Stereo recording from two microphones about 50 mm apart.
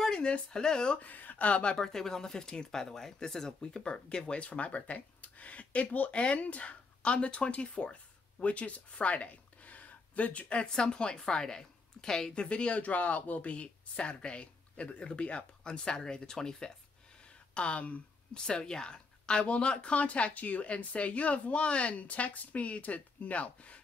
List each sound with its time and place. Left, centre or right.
0.0 s speech: centre
0.9 s speech: left
1.8 s speech: centre
17.6 s speech: left
18.4 s speech: centre